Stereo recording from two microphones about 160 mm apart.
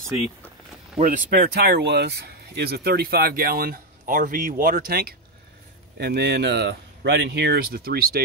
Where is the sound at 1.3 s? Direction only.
85° right; by 5.1 s 70° right (ahead or behind).